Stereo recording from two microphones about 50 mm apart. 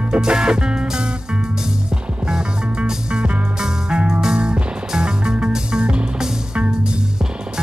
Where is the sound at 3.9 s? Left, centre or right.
Centre.